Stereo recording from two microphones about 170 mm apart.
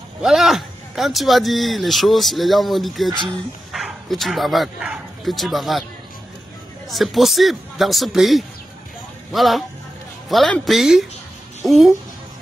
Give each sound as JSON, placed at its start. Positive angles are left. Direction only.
{"t": 0.2, "sound": "speech", "side_deg": 0}
{"t": 3.1, "sound": "speech", "side_deg": -25}
{"t": 3.7, "sound": "speech", "side_deg": 0}
{"t": 6.9, "sound": "speech", "side_deg": 0}